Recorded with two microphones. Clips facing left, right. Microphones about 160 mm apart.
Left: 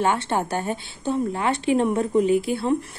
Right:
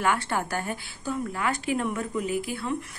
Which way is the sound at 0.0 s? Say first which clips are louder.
Left 4 dB; 25° left (ahead or behind).